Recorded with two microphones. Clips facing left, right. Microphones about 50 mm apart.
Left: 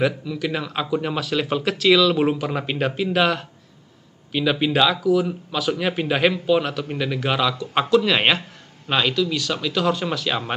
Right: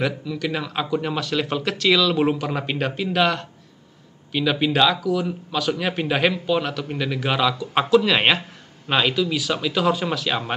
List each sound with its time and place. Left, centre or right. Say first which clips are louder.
0.0 s speech: left 2 dB; centre